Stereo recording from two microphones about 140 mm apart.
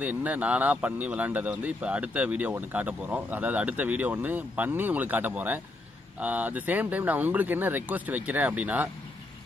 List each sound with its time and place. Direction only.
0.0 s speech: 10° right (ahead or behind)